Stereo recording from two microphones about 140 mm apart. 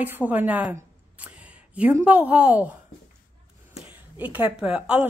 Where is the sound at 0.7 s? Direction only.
10° right (ahead or behind).